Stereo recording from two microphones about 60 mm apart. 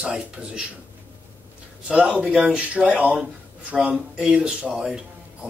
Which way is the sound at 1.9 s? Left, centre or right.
Centre.